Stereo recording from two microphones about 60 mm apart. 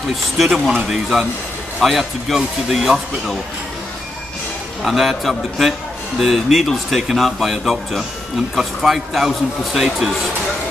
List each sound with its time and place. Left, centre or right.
0.1 s a man's voice: centre
1.8 s a man's voice: centre
4.8 s a man's voice: centre